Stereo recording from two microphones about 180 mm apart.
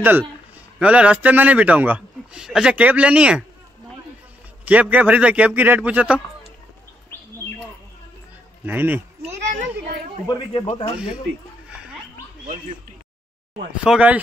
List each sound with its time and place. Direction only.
0.0 s a man's voice: 10° right (ahead or behind)
4.6 s a man's voice: 10° right (ahead or behind)
8.6 s a man's voice: 10° right (ahead or behind)
10.2 s a man's voice: 25° left (ahead or behind)
13.8 s a man's voice: 5° right (ahead or behind)